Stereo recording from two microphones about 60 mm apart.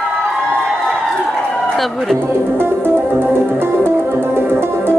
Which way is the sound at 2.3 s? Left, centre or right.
Right.